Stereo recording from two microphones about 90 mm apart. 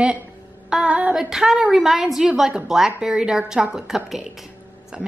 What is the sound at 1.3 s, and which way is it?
A woman's voice, 5° right (ahead or behind).